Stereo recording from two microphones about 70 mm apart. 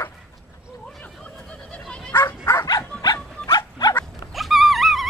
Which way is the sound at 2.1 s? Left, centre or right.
Left.